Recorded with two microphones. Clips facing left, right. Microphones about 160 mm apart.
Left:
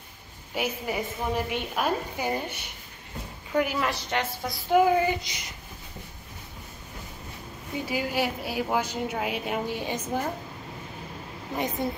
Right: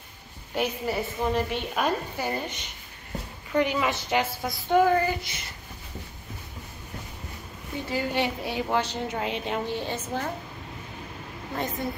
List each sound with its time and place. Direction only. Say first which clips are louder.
0.6 s a woman's voice: right 2 dB; 15° left (ahead or behind)
7.8 s a woman's voice: right 1 dB; 10° left (ahead or behind)
11.5 s a woman's voice: left 2 dB; 20° left (ahead or behind)